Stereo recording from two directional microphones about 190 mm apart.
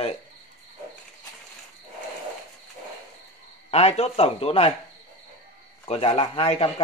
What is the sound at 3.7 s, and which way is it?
Speech, 35° left (ahead or behind).